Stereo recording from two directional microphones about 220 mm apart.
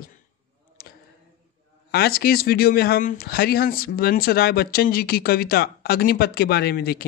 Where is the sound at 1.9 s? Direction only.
45° left (ahead or behind).